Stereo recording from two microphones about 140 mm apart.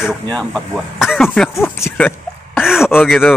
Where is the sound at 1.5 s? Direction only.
20° left (ahead or behind).